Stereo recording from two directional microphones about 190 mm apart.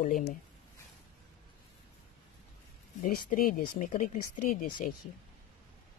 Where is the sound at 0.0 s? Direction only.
45° left (ahead or behind).